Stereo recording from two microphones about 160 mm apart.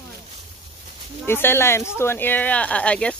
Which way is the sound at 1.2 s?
15° left (ahead or behind).